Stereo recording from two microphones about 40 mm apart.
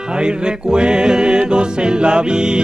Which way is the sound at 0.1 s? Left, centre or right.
Right.